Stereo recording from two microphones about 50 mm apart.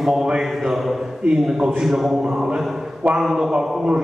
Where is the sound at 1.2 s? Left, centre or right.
Centre.